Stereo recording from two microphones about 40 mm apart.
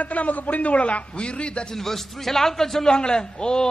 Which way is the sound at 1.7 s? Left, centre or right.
Centre.